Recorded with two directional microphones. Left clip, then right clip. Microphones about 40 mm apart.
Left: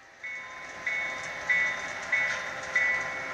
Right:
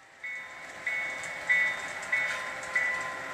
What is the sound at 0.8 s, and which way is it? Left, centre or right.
Train, centre.